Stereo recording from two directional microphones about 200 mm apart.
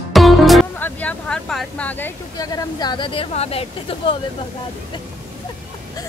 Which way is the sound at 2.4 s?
20° left (ahead or behind).